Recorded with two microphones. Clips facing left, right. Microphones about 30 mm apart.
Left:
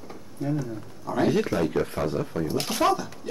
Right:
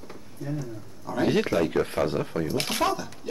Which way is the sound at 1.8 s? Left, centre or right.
Right.